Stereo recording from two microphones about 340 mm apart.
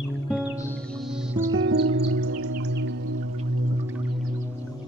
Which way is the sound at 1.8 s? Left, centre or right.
Right.